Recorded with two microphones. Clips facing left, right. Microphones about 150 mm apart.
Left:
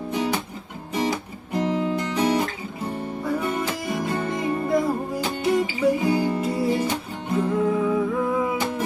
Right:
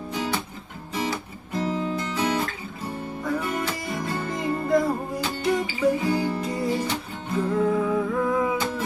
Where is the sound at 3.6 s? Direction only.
15° left (ahead or behind).